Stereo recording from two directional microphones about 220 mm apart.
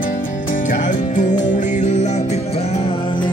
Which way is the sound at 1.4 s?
35° left (ahead or behind).